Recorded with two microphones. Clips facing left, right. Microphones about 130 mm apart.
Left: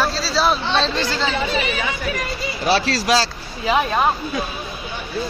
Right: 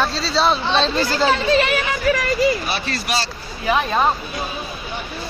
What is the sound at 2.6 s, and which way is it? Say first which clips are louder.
Speech: left 7 dB; 90° left.